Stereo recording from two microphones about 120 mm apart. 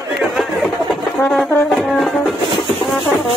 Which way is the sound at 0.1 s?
Centre (ahead or behind).